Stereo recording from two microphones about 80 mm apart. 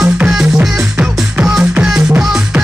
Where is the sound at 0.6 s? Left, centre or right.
Centre.